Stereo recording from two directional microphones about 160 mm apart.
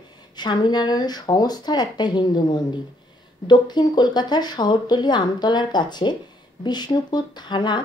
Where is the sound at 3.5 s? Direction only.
25° left (ahead or behind).